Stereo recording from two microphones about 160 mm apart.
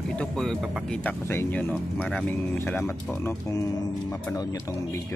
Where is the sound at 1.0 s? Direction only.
10° left (ahead or behind).